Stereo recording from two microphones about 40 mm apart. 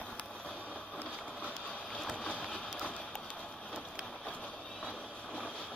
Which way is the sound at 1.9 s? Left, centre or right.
Left.